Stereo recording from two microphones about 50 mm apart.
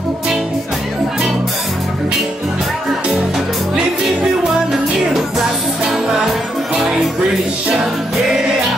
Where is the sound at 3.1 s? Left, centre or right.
Centre.